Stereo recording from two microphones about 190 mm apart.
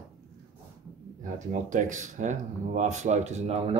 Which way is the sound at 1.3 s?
40° right (ahead or behind).